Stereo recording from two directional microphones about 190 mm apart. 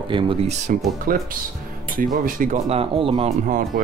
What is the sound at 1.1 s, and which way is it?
Speech, 45° right (ahead or behind).